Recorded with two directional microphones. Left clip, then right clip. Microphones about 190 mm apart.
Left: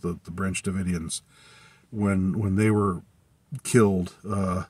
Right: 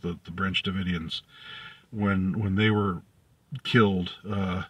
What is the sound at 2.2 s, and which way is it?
Speech, 10° left (ahead or behind).